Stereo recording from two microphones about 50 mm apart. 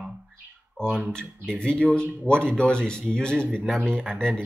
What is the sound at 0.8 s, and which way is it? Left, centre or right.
A man's voice, centre.